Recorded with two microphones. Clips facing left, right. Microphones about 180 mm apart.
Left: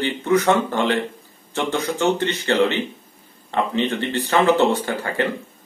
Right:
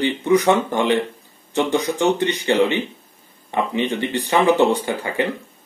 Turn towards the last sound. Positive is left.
turn(degrees=-15)  # may be behind; listen again after turning